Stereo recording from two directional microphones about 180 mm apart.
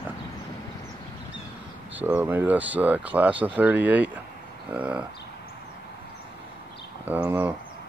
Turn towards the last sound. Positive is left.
turn(degrees=-10)  # may be behind; listen again after turning